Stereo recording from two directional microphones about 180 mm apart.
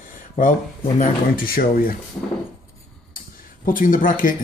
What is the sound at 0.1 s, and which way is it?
Speech, 50° left (ahead or behind).